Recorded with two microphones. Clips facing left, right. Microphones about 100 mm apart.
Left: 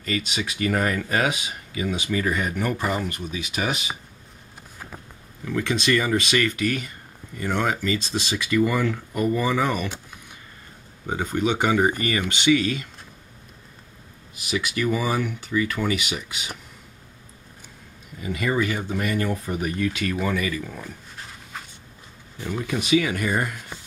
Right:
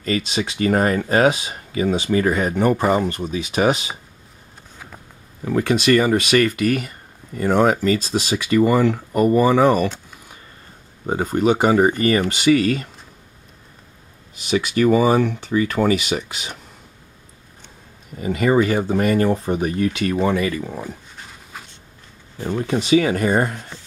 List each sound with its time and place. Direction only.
0.0 s speech: 35° right (ahead or behind)
5.4 s speech: 35° right (ahead or behind)
9.1 s speech: 45° right (ahead or behind)
11.1 s speech: 40° right (ahead or behind)
14.8 s speech: 35° right (ahead or behind)
18.2 s speech: 35° right (ahead or behind)
21.5 s a sound: 5° right (ahead or behind)
22.7 s speech: 35° right (ahead or behind)